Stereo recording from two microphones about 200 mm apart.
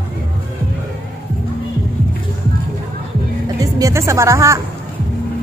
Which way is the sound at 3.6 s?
15° right (ahead or behind).